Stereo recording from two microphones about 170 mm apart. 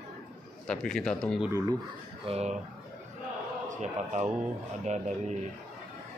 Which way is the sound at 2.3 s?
40° right (ahead or behind).